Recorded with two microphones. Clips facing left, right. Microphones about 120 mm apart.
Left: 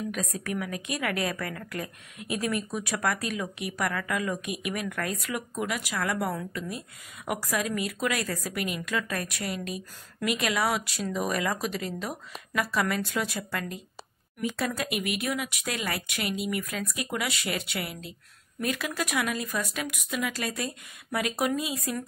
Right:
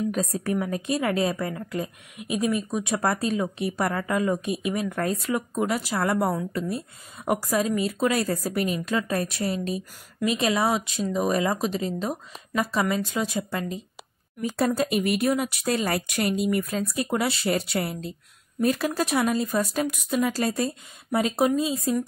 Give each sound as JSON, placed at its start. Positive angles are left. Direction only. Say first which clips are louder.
{"t": 0.1, "sound": "a woman's voice", "louder": "right 6 dB", "side_deg": -35}
{"t": 14.4, "sound": "speech", "louder": "right 6 dB", "side_deg": -35}